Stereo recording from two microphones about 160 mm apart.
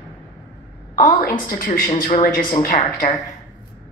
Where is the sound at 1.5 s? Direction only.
60° left (ahead or behind).